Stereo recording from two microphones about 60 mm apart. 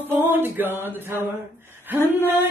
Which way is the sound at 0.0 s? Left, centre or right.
Right.